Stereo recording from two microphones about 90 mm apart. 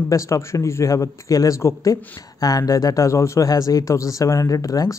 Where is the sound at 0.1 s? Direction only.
35° left (ahead or behind).